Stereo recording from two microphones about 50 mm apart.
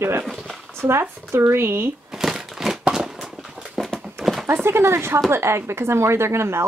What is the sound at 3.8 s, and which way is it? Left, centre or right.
Horse, centre.